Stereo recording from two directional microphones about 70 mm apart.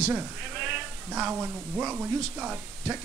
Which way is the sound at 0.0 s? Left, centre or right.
Centre.